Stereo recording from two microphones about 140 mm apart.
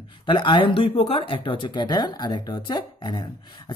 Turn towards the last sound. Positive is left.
turn(degrees=30)  # may be behind; listen again after turning